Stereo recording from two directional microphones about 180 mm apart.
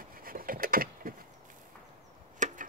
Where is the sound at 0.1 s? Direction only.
55° right (ahead or behind).